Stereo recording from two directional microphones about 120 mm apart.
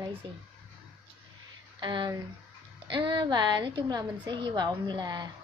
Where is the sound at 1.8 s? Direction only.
40° right (ahead or behind).